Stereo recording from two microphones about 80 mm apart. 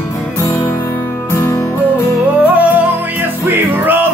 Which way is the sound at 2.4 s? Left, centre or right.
Centre.